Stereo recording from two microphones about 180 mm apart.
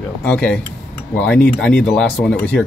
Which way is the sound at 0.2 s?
5° left (ahead or behind).